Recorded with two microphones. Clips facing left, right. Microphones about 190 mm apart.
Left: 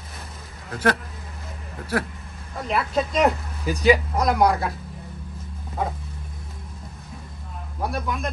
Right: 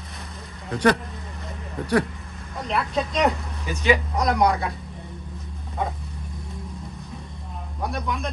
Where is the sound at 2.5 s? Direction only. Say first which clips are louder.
Left 2 dB; centre (ahead or behind).